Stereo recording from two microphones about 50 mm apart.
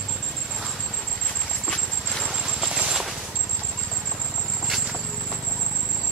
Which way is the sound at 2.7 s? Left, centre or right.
Centre.